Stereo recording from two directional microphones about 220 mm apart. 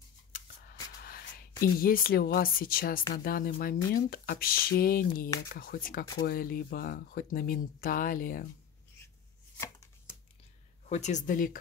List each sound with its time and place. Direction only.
0.9 s a sound: 40° left (ahead or behind)
1.8 s speech: 40° left (ahead or behind)
10.9 s speech: 30° left (ahead or behind)